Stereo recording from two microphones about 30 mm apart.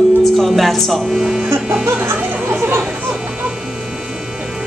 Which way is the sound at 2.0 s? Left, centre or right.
Right.